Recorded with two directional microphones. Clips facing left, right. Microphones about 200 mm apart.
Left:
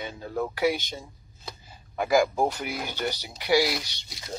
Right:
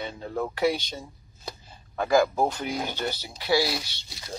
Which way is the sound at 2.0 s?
15° left (ahead or behind).